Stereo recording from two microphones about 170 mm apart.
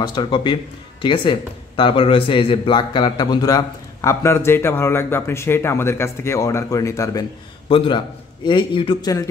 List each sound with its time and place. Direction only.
0.0 s a man's voice: 25° left (ahead or behind)
7.7 s a man's voice: 30° left (ahead or behind)